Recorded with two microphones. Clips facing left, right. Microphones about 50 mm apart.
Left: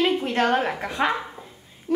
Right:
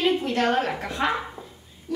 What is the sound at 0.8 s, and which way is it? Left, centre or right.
Speech, centre.